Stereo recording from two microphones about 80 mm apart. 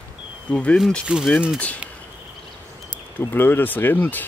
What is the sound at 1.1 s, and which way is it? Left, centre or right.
Speech, centre.